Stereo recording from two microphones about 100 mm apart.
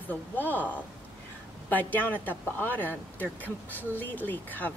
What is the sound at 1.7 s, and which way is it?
Speech, 15° left (ahead or behind).